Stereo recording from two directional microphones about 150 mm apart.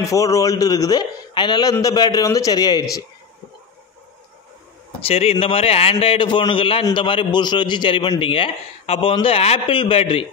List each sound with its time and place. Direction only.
0.0 s a man's voice: 20° left (ahead or behind)
5.0 s a man's voice: 40° left (ahead or behind)